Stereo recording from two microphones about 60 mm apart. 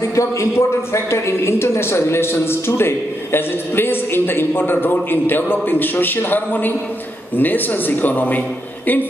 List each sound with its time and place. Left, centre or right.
0.1 s a woman's voice: left